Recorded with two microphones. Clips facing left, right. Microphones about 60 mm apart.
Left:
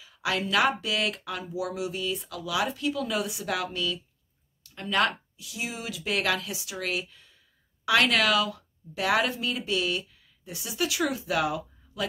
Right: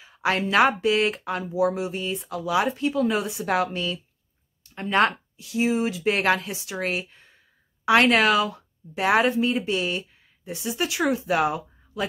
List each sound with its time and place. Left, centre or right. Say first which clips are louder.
0.0 s speech: right 5 dB; right